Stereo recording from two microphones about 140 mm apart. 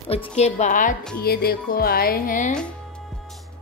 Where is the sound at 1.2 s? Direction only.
90° left; by 2.5 s 75° left (ahead or behind).